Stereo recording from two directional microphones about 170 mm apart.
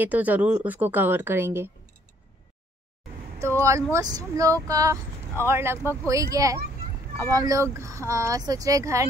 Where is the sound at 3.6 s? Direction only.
20° right (ahead or behind).